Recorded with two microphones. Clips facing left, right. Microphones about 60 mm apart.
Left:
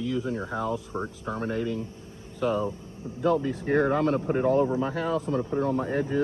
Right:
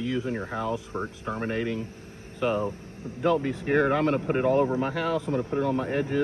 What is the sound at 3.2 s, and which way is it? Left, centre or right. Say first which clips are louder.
Speech: even; right.